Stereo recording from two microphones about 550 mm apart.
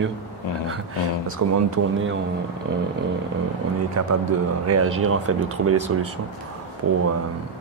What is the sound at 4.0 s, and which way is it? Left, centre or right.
Speech, right.